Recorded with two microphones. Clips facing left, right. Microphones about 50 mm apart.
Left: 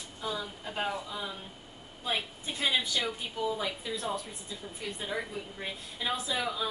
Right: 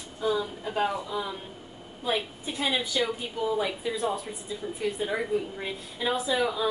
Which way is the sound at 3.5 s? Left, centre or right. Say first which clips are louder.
Right 6 dB; centre.